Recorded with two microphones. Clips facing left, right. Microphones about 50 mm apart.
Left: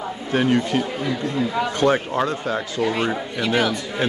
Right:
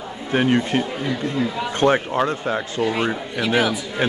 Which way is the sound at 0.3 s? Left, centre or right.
Right.